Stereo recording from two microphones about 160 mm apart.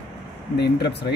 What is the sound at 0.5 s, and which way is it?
Speech, 90° left.